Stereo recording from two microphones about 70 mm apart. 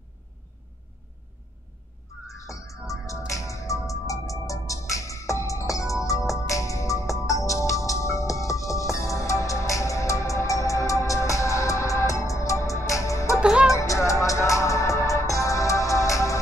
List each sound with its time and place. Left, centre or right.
2.4 s music: left
13.4 s music: centre
13.7 s music: left